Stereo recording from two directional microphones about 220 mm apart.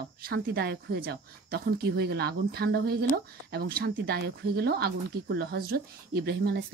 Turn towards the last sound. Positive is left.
turn(degrees=-45)  # may be behind; listen again after turning